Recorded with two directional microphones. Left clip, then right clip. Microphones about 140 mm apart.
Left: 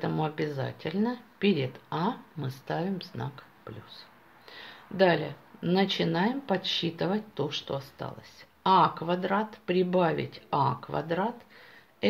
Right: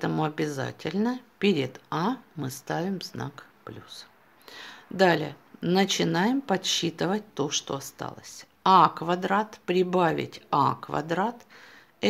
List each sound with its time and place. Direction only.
0.0 s speech: 50° right (ahead or behind)